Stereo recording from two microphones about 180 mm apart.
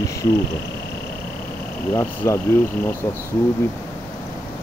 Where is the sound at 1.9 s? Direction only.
15° left (ahead or behind).